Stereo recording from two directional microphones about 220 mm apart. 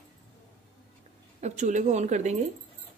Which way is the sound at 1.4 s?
35° right (ahead or behind).